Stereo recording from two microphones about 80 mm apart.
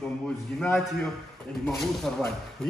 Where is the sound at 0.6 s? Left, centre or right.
Centre.